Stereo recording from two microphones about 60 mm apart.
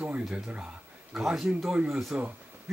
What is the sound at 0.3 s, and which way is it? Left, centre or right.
Speech, centre.